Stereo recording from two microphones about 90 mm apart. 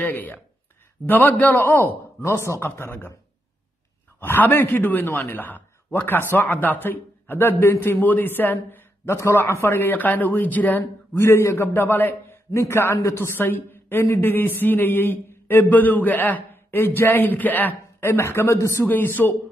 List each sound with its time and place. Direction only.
0.0 s speech: 20° left (ahead or behind)
2.3 s speech: 35° left (ahead or behind)
4.2 s speech: 25° left (ahead or behind)
18.9 s speech: 20° left (ahead or behind)